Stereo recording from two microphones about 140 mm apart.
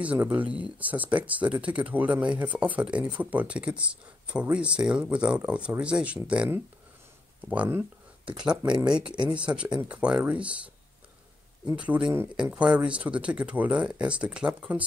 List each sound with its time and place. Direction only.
0.0 s speech: 10° right (ahead or behind)
8.7 s speech: 35° right (ahead or behind)
9.3 s speech: 10° right (ahead or behind)
11.7 s speech: 10° right (ahead or behind)